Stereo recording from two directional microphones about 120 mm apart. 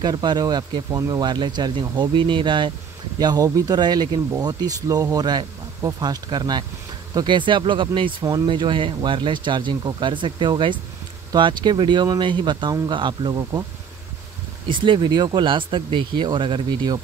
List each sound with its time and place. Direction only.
0.0 s speech: 35° right (ahead or behind)
14.7 s speech: 40° right (ahead or behind)